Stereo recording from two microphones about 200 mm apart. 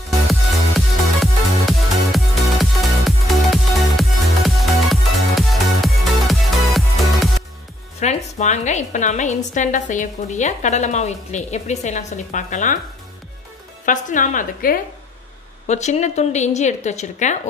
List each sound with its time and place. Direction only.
0.3 s music: centre (ahead or behind)
5.3 s music: centre (ahead or behind)
8.0 s a woman's voice: 35° left (ahead or behind)
13.8 s a woman's voice: 40° left (ahead or behind)